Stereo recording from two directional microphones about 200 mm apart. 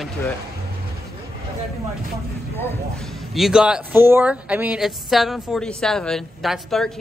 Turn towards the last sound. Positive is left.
turn(degrees=0)  # may be behind; listen again after turning